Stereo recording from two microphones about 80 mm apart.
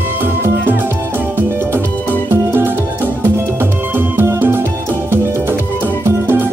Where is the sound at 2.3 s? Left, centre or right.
Right.